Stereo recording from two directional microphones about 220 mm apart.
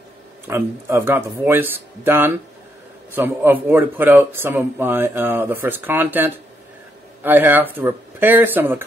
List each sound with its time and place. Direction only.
0.5 s speech: 10° right (ahead or behind)